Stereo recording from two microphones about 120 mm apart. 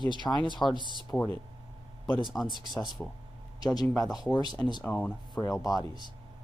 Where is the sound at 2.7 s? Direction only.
Centre (ahead or behind).